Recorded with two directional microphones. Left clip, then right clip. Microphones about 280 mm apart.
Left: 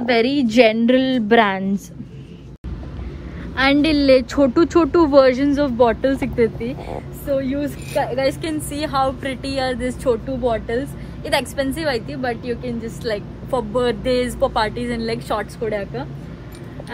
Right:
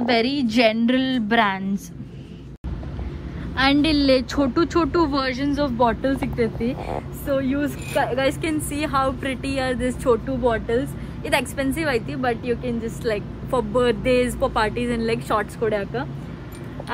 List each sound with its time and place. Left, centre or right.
0.0 s a woman's voice: centre
3.5 s a woman's voice: centre
5.4 s speech: centre
6.6 s a woman's voice: right
7.2 s a woman's voice: centre